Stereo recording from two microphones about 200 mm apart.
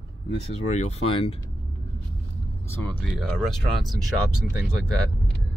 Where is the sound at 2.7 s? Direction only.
10° left (ahead or behind).